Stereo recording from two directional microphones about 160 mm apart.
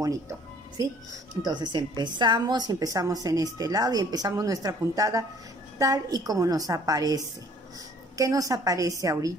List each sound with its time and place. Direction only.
0.0 s music: 20° right (ahead or behind)
1.4 s a woman's voice: 25° right (ahead or behind)